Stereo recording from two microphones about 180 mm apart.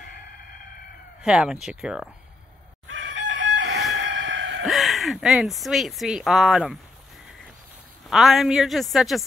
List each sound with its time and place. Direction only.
1.2 s speech: 5° right (ahead or behind)
2.9 s chicken: 90° right
4.0 s fowl: 90° right
4.6 s speech: centre (ahead or behind)
8.1 s speech: centre (ahead or behind)